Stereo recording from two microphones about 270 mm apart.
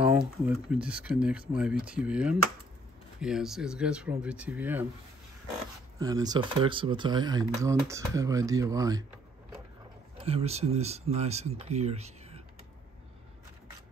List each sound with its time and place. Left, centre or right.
0.5 s speech: centre
5.9 s speech: centre
10.1 s speech: right